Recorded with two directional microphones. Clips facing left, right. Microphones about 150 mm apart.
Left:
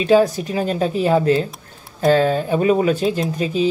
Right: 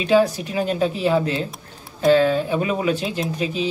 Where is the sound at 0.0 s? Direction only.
40° left (ahead or behind).